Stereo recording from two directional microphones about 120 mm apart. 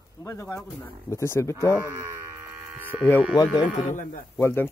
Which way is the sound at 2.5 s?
10° right (ahead or behind).